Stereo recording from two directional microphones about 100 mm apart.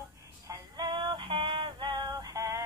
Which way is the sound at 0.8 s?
50° right (ahead or behind).